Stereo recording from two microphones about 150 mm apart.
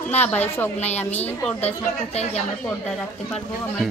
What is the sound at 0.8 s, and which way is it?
Speech, 45° left (ahead or behind).